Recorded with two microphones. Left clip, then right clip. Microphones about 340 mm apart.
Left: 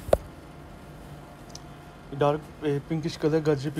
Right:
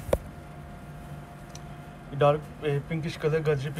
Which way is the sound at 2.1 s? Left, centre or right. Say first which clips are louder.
Right 2 dB; centre.